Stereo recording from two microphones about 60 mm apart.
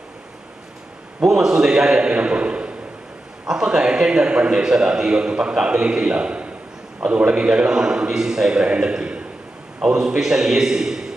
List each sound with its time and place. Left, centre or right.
1.2 s a man's voice: centre